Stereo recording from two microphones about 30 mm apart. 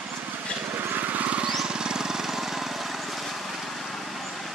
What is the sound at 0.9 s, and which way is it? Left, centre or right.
Vehicle, right.